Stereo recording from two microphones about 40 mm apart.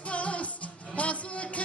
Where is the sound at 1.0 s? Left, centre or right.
Left.